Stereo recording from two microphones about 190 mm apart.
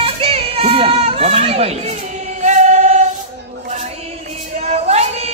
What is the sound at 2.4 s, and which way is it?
Choir, 40° right (ahead or behind).